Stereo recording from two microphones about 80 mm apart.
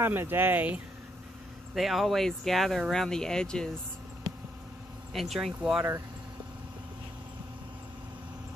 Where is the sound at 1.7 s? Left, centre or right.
Centre.